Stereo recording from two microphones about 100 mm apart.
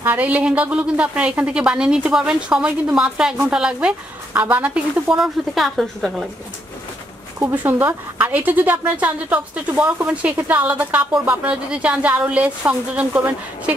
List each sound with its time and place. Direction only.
0.0 s a woman's voice: 15° right (ahead or behind)
5.1 s a woman's voice: centre (ahead or behind)
7.4 s a woman's voice: 20° right (ahead or behind)